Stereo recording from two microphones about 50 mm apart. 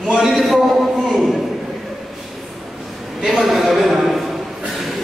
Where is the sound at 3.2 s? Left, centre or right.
Centre.